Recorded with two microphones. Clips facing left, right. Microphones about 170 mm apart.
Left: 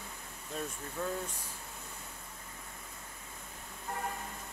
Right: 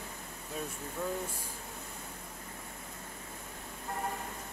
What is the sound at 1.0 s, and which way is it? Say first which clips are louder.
Speech: even; 10° right (ahead or behind).